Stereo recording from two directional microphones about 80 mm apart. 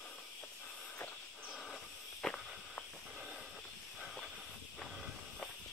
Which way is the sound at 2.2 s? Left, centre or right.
Centre.